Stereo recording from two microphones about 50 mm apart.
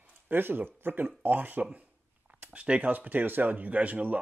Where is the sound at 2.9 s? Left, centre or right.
Right.